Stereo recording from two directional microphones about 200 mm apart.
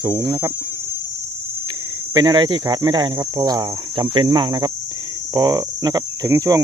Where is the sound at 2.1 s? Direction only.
20° right (ahead or behind).